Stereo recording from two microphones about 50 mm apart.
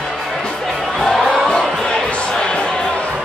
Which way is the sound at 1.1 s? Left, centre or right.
Centre.